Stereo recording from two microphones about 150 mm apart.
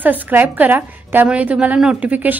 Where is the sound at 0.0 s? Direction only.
10° right (ahead or behind).